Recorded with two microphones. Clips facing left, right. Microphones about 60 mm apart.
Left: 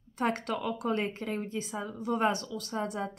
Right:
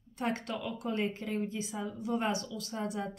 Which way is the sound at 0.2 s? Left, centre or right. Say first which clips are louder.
Left 4 dB; left.